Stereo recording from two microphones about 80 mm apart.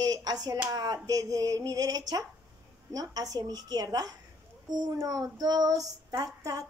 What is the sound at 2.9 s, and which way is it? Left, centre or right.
Child singing, right.